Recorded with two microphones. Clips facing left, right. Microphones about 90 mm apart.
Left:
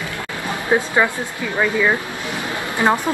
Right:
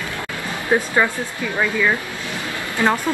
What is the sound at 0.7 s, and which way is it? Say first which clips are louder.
Speech: left 1 dB; 15° left (ahead or behind).